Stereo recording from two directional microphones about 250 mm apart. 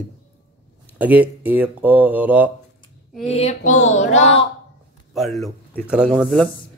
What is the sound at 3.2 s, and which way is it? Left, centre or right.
Child singing, left.